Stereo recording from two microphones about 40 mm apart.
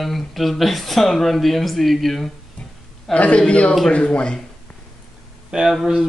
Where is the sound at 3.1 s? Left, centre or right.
Left.